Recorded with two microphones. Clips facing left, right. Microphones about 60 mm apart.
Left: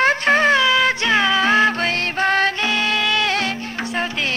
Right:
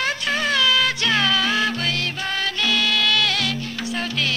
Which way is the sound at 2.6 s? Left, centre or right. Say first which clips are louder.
Left 2 dB; left.